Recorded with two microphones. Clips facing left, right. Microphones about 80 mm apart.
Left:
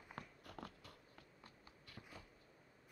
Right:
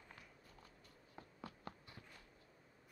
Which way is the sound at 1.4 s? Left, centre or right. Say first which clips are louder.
Right 10 dB; right.